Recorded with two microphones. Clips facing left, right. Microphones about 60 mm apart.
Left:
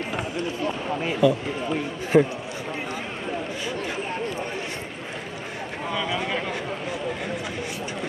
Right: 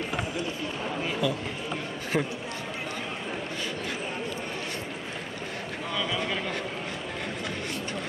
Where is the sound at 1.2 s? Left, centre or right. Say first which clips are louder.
Left 8 dB; left.